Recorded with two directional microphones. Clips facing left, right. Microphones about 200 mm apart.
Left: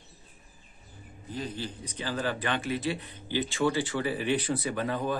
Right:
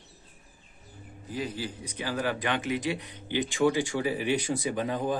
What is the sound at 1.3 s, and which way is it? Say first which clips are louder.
A man's voice: right 2 dB; 10° right (ahead or behind).